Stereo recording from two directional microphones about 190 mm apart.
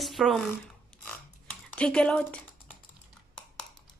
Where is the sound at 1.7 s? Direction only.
5° left (ahead or behind).